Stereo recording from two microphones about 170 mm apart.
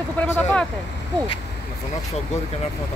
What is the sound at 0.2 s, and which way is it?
Speech, 10° left (ahead or behind).